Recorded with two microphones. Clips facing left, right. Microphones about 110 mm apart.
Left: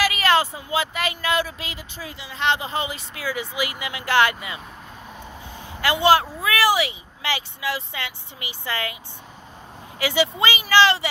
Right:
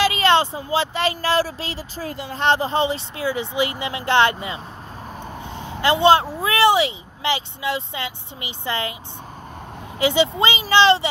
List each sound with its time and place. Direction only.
0.0 s speech: 25° right (ahead or behind)
5.6 s speech: 25° right (ahead or behind)
9.9 s speech: 25° right (ahead or behind)